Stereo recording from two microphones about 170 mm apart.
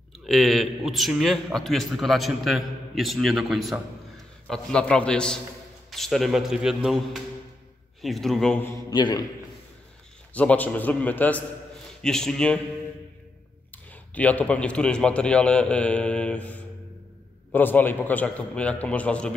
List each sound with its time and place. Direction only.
0.3 s a man's voice: centre (ahead or behind)
8.0 s a man's voice: centre (ahead or behind)
8.9 s a man's voice: 25° left (ahead or behind)
10.3 s a man's voice: 10° left (ahead or behind)
14.1 s a man's voice: 10° left (ahead or behind)